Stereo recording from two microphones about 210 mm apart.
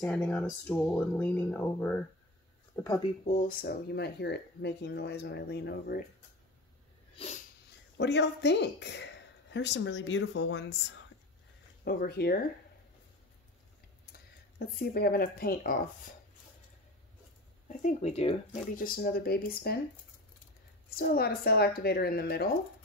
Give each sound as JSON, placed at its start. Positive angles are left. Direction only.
{"t": 0.0, "sound": "speech", "side_deg": 5}
{"t": 3.3, "sound": "speech", "side_deg": 45}
{"t": 8.0, "sound": "a woman's voice", "side_deg": 55}
{"t": 11.8, "sound": "speech", "side_deg": 50}
{"t": 14.6, "sound": "speech", "side_deg": 45}
{"t": 17.6, "sound": "speech", "side_deg": 35}
{"t": 20.9, "sound": "speech", "side_deg": 45}